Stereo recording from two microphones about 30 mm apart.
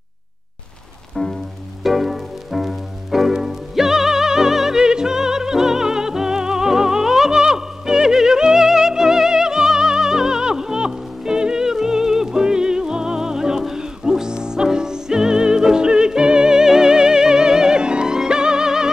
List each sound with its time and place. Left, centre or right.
1.8 s music: centre
4.7 s music: right